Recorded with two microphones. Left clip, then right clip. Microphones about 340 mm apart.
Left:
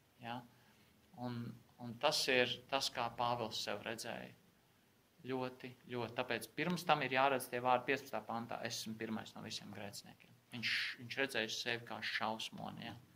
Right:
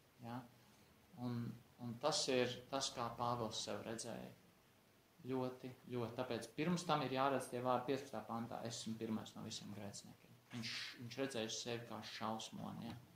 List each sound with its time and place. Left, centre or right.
2.0 s speech: left
5.2 s speech: left